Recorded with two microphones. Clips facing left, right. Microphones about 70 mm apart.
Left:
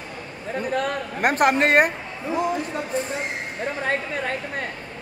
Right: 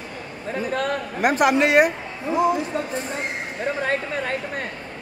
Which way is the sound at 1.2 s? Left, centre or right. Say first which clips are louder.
Right 1 dB; left.